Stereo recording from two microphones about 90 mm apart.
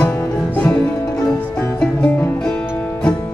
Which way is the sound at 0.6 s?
10° left (ahead or behind).